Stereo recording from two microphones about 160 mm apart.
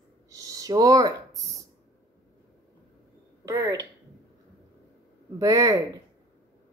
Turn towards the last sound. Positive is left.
turn(degrees=-20)  # may be behind; listen again after turning